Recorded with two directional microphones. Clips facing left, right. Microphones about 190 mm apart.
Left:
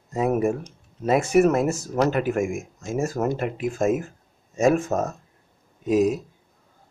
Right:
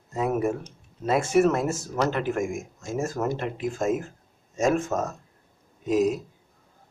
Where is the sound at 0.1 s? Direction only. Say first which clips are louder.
Left 3 dB; 15° left (ahead or behind).